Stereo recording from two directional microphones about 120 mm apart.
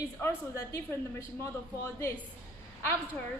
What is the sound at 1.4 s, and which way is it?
Speech, 20° left (ahead or behind).